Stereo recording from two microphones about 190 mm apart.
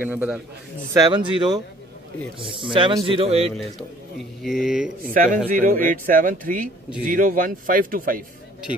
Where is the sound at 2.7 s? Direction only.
25° right (ahead or behind).